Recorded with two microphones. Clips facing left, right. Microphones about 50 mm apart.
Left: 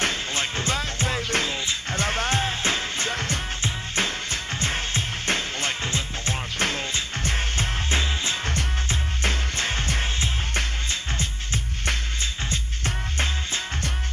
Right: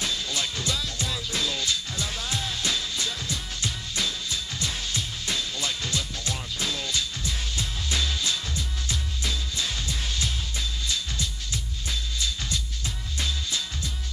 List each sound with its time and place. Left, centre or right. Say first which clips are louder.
0.0 s music: left 4 dB; left
8.5 s music: left 5 dB; left